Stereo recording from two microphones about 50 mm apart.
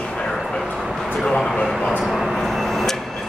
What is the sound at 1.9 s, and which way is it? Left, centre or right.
Vehicle, centre.